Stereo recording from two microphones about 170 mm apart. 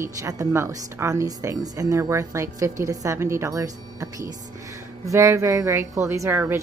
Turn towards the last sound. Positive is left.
turn(degrees=-15)  # may be behind; listen again after turning